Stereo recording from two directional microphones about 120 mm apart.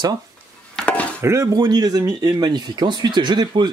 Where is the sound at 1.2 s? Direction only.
25° right (ahead or behind).